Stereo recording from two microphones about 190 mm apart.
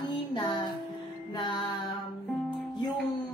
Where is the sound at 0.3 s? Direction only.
25° left (ahead or behind).